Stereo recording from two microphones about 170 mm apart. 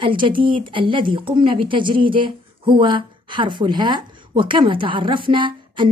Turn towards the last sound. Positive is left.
turn(degrees=-30)  # may be behind; listen again after turning